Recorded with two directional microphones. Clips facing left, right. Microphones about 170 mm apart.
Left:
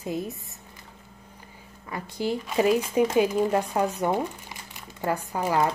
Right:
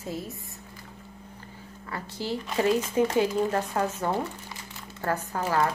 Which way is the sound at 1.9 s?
15° left (ahead or behind).